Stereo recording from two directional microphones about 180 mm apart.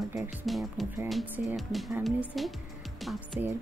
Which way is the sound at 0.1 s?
10° right (ahead or behind).